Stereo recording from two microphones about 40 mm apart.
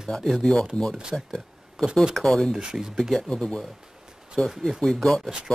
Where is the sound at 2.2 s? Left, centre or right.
Centre.